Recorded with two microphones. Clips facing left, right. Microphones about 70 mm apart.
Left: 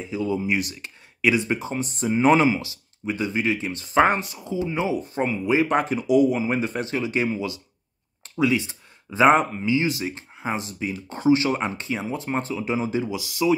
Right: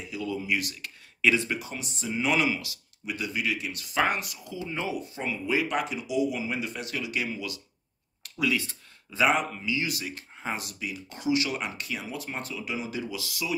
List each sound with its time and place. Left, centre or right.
0.0 s speech: left
1.6 s speech: left
5.1 s speech: left
8.2 s a sound: left
9.3 s speech: left